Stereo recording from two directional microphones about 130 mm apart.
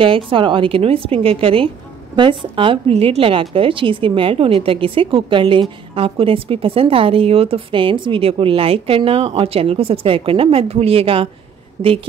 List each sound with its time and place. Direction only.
0.0 s a woman's voice: 40° right (ahead or behind)